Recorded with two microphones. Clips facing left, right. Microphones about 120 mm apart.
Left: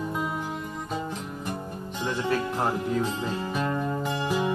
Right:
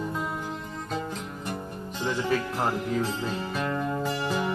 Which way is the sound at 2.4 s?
20° left (ahead or behind).